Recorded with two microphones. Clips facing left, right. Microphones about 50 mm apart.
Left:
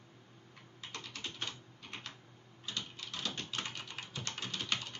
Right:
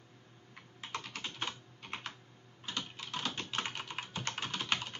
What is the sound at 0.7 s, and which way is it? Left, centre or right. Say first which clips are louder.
Typing: right 4 dB; right.